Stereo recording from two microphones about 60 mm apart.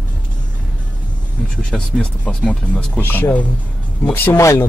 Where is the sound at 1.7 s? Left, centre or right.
Centre.